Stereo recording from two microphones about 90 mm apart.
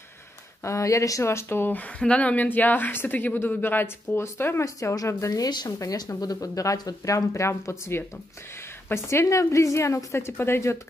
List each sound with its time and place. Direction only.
0.7 s speech: 35° left (ahead or behind)
4.6 s a woman's voice: 40° left (ahead or behind)